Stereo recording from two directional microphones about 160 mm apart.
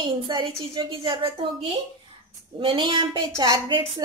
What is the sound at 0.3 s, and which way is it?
A woman's voice, 35° right (ahead or behind).